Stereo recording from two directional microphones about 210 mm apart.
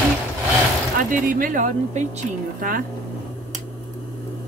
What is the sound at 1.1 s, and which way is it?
Speech, 40° right (ahead or behind).